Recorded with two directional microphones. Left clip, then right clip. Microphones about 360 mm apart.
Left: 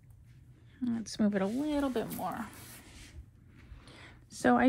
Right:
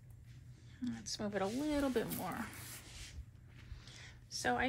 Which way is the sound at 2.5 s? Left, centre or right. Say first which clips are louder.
Even; centre.